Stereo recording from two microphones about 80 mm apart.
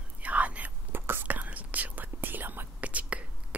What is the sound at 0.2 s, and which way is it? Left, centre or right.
Whispering, centre.